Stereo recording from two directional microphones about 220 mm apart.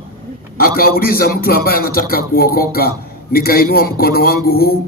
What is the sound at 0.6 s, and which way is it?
A man's voice, 40° left (ahead or behind).